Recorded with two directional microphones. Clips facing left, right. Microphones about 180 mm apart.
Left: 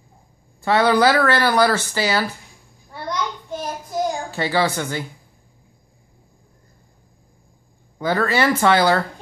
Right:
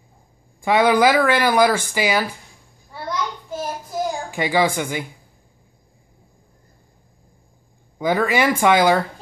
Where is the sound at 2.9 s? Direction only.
5° right (ahead or behind).